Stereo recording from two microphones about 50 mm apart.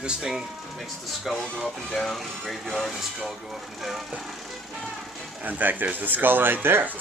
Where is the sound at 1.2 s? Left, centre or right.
Centre.